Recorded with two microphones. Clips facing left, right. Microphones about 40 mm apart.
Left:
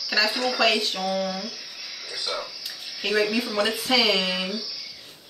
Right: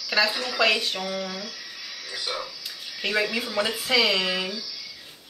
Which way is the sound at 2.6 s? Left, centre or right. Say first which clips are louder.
Left 2 dB; centre.